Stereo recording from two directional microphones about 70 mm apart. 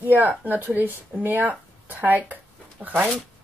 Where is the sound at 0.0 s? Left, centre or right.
Right.